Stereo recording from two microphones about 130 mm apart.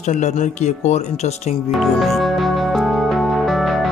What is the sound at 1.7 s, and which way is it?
Music, centre (ahead or behind).